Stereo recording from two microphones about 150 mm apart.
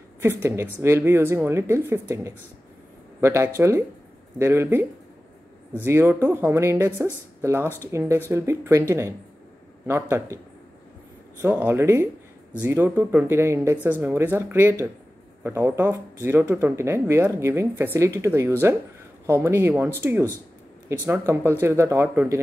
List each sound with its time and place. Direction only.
0.2 s speech: 15° right (ahead or behind)
5.9 s speech: 15° right (ahead or behind)